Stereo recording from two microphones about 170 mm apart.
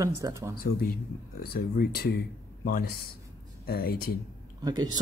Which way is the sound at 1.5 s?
70° left (ahead or behind).